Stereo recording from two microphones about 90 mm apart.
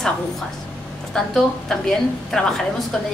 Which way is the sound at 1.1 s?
5° left (ahead or behind).